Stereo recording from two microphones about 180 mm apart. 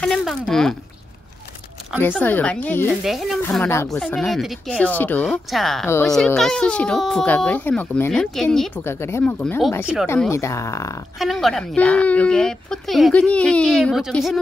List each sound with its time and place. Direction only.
0.0 s speech: centre (ahead or behind)
2.0 s speech: 10° left (ahead or behind)
3.0 s speech: centre (ahead or behind)
3.6 s speech: 15° left (ahead or behind)
3.9 s speech: 5° left (ahead or behind)
5.2 s speech: centre (ahead or behind); by 11.0 s 15° left (ahead or behind)
11.1 s speech: centre (ahead or behind)